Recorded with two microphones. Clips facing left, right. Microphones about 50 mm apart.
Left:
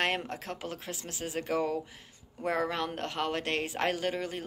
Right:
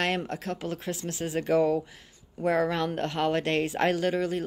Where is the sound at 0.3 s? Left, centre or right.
Centre.